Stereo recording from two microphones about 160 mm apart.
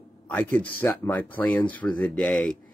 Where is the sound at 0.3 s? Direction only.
10° left (ahead or behind).